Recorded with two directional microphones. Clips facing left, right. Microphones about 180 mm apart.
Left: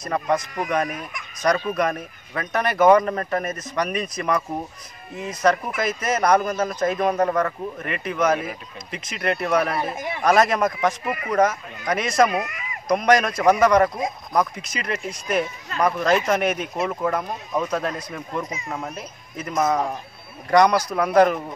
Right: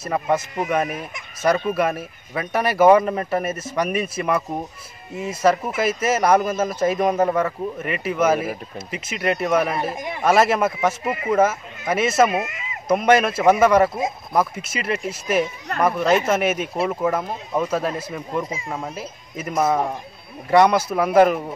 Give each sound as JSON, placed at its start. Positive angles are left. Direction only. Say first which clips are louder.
{"t": 0.0, "sound": "a man's voice", "louder": "right 1 dB", "side_deg": -5}
{"t": 0.8, "sound": "speech", "louder": "right 2 dB", "side_deg": -25}
{"t": 1.7, "sound": "a man's voice", "louder": "right 2 dB", "side_deg": -5}
{"t": 11.1, "sound": "speech", "louder": "right 4 dB", "side_deg": -25}
{"t": 11.3, "sound": "speech", "louder": "even", "side_deg": -5}
{"t": 12.3, "sound": "speech", "louder": "right 1 dB", "side_deg": -25}
{"t": 12.8, "sound": "a man's voice", "louder": "right 2 dB", "side_deg": -5}